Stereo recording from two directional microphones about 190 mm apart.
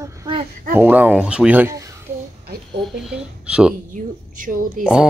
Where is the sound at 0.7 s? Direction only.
10° right (ahead or behind).